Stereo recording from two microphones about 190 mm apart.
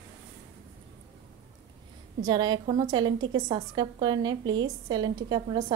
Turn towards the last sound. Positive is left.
turn(degrees=-20)  # may be behind; listen again after turning